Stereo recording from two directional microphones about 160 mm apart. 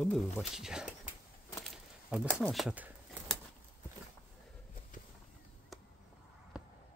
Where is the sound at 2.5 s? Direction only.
5° right (ahead or behind).